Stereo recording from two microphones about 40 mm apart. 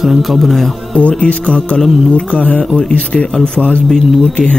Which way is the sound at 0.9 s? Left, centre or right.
Left.